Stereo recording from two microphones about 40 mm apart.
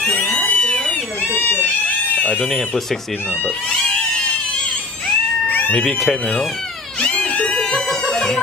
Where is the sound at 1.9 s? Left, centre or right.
Left.